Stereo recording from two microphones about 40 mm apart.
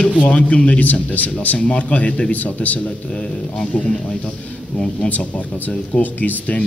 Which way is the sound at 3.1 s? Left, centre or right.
Left.